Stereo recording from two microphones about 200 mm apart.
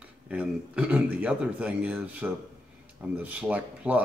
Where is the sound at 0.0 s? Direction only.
5° right (ahead or behind).